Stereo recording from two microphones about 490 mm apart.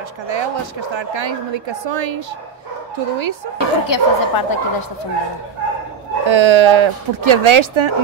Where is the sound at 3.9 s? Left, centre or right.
Left.